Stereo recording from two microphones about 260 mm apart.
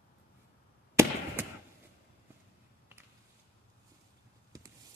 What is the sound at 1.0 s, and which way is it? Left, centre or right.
Fireworks, centre.